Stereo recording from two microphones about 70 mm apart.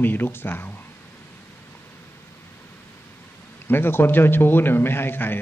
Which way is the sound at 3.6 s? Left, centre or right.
Left.